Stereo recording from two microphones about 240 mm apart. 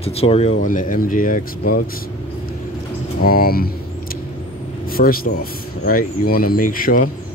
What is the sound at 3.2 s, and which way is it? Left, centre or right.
Speech, left.